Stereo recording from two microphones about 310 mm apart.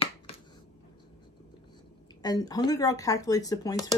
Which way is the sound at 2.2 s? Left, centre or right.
Centre.